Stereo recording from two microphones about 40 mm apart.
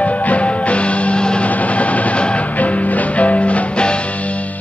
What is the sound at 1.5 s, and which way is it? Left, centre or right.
Music, left.